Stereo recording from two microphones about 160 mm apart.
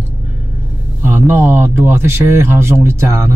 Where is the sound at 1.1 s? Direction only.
10° right (ahead or behind).